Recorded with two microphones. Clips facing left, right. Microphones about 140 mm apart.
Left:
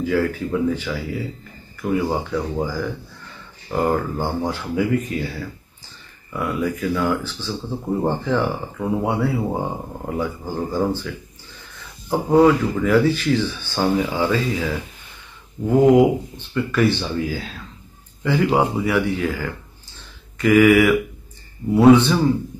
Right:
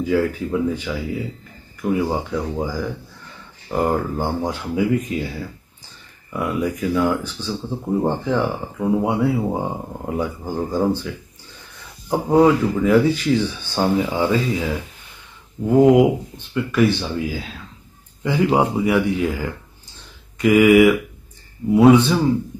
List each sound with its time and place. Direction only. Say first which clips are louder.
0.0 s speech: right 1 dB; 15° right (ahead or behind)
2.3 s speech: even; 15° right (ahead or behind)
12.1 s speech: even; 15° right (ahead or behind)
21.9 s speech: even; 10° right (ahead or behind)